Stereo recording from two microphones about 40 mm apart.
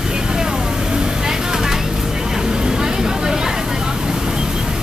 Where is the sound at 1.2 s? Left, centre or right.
Centre.